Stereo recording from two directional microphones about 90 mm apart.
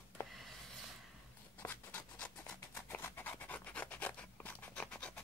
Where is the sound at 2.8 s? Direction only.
25° left (ahead or behind).